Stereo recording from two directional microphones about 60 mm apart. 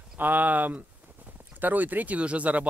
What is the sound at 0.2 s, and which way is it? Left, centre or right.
Speech, right.